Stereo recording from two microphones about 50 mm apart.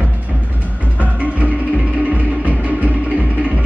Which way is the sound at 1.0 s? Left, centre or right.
Right.